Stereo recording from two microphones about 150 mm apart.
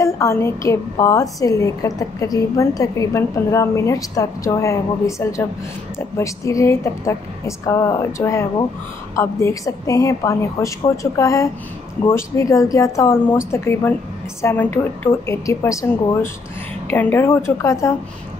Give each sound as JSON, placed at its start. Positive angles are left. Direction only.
{"t": 0.0, "sound": "a woman's voice", "side_deg": 20}